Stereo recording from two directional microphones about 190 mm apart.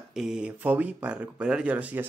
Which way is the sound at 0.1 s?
5° right (ahead or behind).